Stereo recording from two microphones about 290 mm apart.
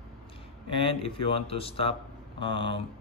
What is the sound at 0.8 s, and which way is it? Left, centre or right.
Speech, centre.